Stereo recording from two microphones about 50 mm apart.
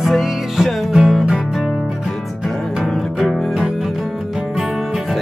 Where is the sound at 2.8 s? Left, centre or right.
Centre.